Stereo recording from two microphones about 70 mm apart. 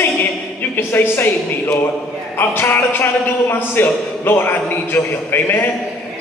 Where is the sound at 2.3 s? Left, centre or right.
Left.